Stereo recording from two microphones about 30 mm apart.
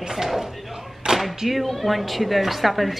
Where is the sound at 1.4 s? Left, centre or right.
Centre.